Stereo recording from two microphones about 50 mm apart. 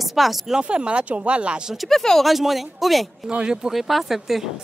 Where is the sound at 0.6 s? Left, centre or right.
Right.